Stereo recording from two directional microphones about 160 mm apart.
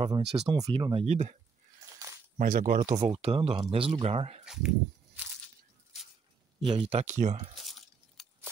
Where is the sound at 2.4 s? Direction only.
60° right (ahead or behind).